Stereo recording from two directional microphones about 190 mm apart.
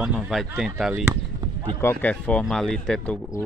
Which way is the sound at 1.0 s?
20° right (ahead or behind).